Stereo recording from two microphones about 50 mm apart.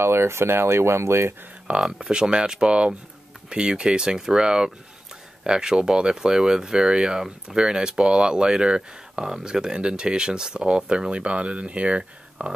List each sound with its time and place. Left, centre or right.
0.0 s speech: right
1.8 s speech: centre